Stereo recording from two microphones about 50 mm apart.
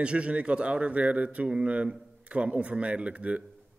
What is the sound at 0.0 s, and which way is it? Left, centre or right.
Speech, right.